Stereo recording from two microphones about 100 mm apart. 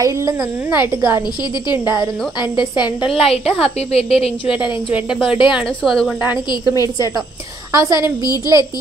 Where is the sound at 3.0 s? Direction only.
75° left (ahead or behind).